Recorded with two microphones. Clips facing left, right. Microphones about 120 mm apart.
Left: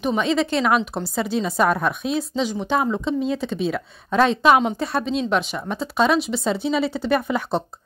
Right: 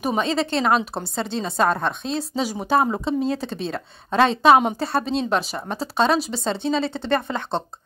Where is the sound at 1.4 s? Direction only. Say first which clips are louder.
Left 1 dB; 25° right (ahead or behind).